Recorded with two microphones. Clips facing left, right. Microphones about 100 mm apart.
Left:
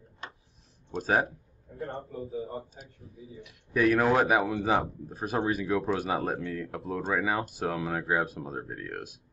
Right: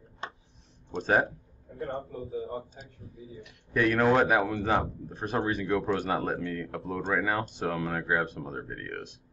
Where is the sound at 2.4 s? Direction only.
5° left (ahead or behind).